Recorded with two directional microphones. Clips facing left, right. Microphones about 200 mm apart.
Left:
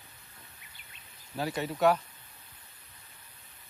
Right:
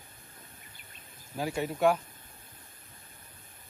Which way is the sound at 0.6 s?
45° right (ahead or behind).